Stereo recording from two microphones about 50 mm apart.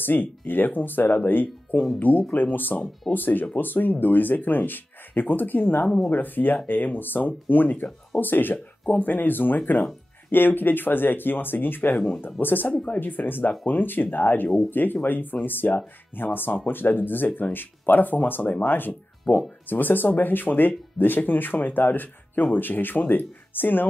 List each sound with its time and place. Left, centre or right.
0.0 s speech: left
12.7 s speech: left
13.0 s speech: left